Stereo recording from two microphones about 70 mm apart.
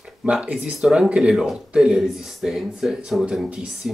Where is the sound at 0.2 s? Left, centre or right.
Centre.